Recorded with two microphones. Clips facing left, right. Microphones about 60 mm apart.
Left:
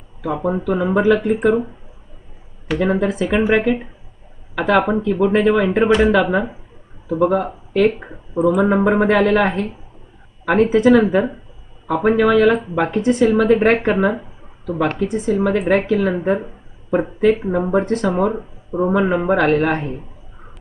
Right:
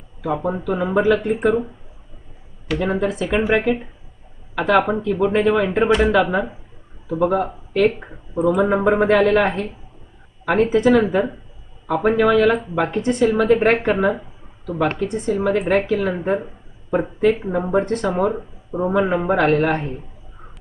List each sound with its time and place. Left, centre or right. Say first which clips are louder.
0.2 s speech: left 2 dB; centre
2.8 s speech: left 3 dB; centre